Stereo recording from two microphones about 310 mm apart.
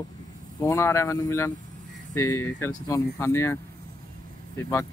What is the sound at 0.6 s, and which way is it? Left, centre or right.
Speech, centre.